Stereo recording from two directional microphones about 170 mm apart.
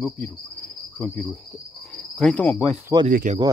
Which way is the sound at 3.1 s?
50° right (ahead or behind).